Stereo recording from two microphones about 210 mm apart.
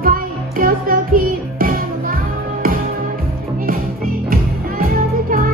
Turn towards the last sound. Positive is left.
turn(degrees=-40)  # may be behind; listen again after turning